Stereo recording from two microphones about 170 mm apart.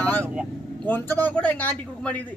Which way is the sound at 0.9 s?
10° left (ahead or behind).